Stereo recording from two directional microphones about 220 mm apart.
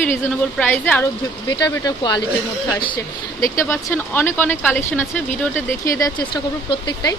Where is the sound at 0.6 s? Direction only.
10° left (ahead or behind).